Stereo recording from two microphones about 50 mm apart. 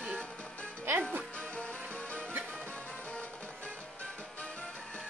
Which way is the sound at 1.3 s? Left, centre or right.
Left.